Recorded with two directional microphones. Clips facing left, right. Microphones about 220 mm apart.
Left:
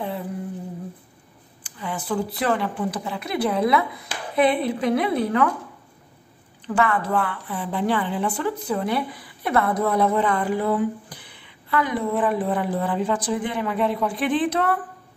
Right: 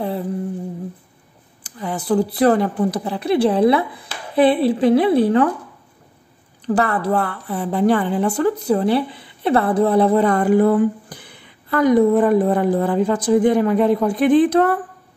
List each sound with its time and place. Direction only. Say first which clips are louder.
1.6 s a woman's voice: right 5 dB; 40° right (ahead or behind)
6.7 s a woman's voice: right 4 dB; 35° right (ahead or behind)